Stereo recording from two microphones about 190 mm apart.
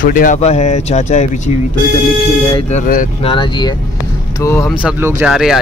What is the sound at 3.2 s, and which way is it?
Speech, 25° left (ahead or behind).